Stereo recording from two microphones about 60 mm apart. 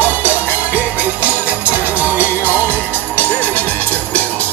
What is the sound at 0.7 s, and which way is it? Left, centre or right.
Music, right.